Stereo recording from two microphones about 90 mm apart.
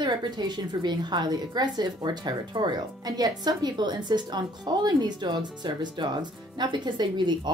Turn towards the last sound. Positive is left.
turn(degrees=-55)  # may be behind; listen again after turning